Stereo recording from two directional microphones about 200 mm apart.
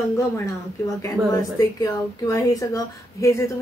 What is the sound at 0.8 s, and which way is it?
A woman's voice, 15° left (ahead or behind).